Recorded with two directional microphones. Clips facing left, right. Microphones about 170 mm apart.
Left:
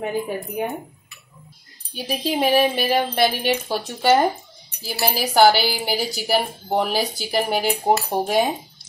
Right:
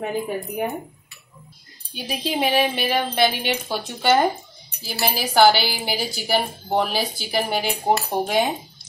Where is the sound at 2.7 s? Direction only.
40° left (ahead or behind).